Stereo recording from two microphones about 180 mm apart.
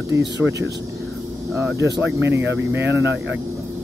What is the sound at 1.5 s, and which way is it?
Speech, 10° right (ahead or behind).